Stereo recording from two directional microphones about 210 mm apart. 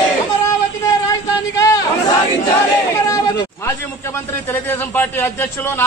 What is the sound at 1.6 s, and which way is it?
Chatter, 15° left (ahead or behind).